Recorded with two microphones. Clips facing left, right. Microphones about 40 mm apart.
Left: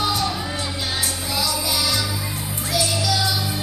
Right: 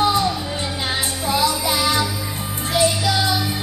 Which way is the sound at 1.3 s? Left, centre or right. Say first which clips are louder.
Right 6 dB; right.